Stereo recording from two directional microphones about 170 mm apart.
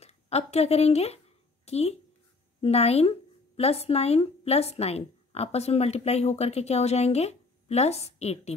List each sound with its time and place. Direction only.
0.0 s a woman's voice: 40° left (ahead or behind)